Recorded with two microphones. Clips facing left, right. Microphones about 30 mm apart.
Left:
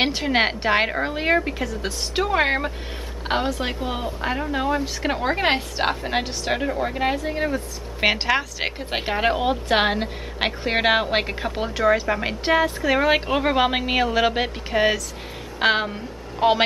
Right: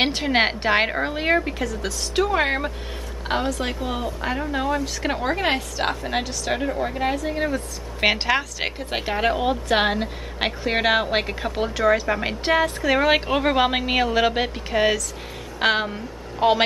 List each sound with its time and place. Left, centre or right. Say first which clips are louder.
0.0 s speech: even; centre
1.7 s speech: even; centre
5.3 s a woman's voice: left 1 dB; left
5.9 s speech: left 2 dB; centre